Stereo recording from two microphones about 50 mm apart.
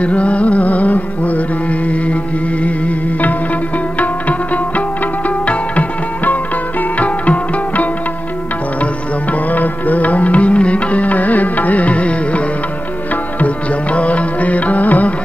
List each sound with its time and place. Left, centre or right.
0.0 s music: left
9.3 s music: left
13.9 s music: left